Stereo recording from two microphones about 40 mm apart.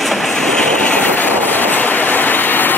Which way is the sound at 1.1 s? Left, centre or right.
Left.